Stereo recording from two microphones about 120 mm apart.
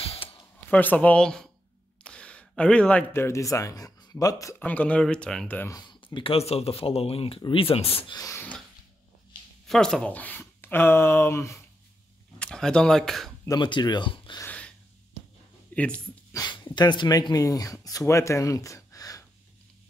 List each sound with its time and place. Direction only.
0.0 s a sound: 55° left (ahead or behind)
0.7 s speech: 15° left (ahead or behind); by 4.6 s 30° left (ahead or behind)
4.6 s speech: 15° left (ahead or behind)
5.7 s a sound: 40° left (ahead or behind)
6.1 s speech: 55° left (ahead or behind)
8.1 s a sound: 30° left (ahead or behind)
9.7 s speech: 5° left (ahead or behind); by 11.6 s 25° left (ahead or behind)
12.4 s speech: 5° left (ahead or behind)
13.5 s speech: 40° left (ahead or behind)
14.4 s a sound: 10° left (ahead or behind)
15.7 s speech: 10° left (ahead or behind)
16.3 s speech: 35° left (ahead or behind)